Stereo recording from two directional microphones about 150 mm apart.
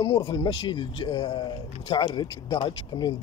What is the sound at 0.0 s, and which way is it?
Speech, 30° left (ahead or behind).